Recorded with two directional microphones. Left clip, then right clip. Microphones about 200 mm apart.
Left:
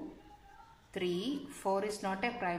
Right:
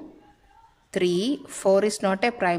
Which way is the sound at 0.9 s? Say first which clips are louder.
Right 12 dB; 55° right (ahead or behind).